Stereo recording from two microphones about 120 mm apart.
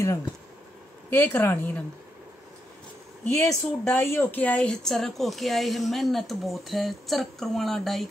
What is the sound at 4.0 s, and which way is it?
Speech, 20° left (ahead or behind).